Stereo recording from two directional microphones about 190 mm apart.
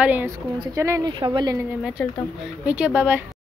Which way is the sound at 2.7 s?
5° right (ahead or behind).